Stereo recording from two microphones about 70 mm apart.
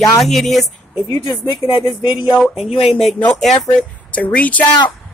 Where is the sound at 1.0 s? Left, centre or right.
Left.